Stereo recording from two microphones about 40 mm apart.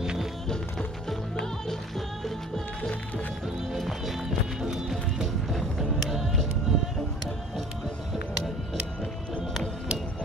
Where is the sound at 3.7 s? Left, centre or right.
Centre.